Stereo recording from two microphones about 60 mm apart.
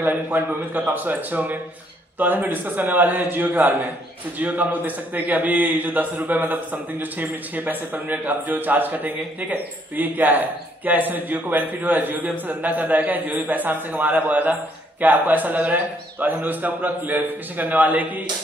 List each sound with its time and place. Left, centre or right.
0.0 s a man's voice: right